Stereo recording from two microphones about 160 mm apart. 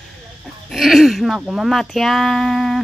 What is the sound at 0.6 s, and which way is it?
A woman's voice, centre (ahead or behind).